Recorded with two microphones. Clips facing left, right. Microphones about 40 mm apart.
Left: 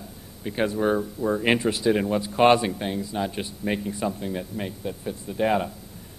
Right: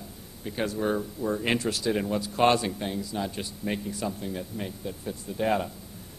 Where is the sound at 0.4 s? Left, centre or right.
Left.